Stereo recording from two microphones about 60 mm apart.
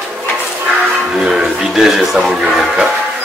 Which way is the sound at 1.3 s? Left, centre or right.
Centre.